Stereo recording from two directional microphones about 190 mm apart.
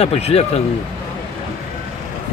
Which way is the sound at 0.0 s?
30° left (ahead or behind).